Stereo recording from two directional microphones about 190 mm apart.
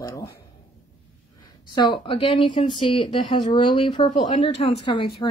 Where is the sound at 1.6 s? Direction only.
25° left (ahead or behind).